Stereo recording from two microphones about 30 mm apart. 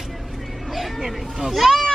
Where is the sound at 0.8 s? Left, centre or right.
Centre.